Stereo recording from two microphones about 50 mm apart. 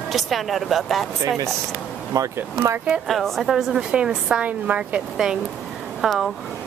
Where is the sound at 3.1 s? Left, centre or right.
Centre; by 5.0 s right.